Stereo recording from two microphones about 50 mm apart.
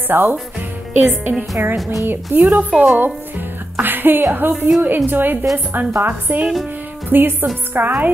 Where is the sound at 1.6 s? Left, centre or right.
Right.